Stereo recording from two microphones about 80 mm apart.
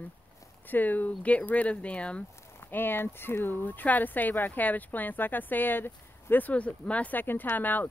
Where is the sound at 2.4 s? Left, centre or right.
Left.